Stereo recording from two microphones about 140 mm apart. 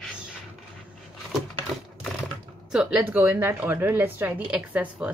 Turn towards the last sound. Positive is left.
turn(degrees=-10)  # may be behind; listen again after turning